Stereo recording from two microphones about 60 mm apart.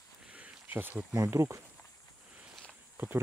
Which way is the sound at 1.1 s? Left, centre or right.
Right.